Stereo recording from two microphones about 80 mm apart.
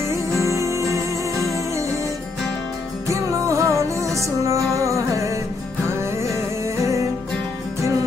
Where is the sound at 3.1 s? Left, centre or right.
Right.